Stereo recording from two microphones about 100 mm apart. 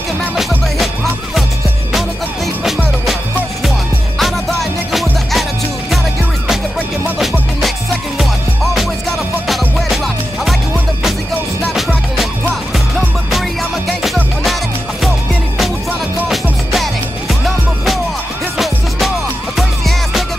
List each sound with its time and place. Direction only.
1.9 s music: centre (ahead or behind)
4.2 s music: centre (ahead or behind)
9.5 s music: centre (ahead or behind)
12.7 s music: centre (ahead or behind)
16.7 s music: centre (ahead or behind)